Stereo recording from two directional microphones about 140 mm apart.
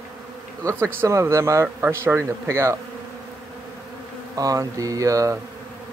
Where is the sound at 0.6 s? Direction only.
20° right (ahead or behind).